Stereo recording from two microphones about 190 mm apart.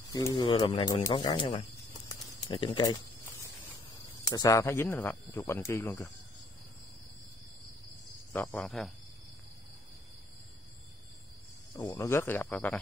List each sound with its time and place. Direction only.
0.1 s speech: 20° left (ahead or behind)
2.0 s a sound: 20° left (ahead or behind)
3.9 s speech: 20° left (ahead or behind)
8.3 s speech: 10° left (ahead or behind)
11.7 s speech: 15° left (ahead or behind)